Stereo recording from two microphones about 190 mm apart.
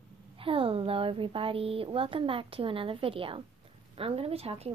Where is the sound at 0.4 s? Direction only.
30° right (ahead or behind).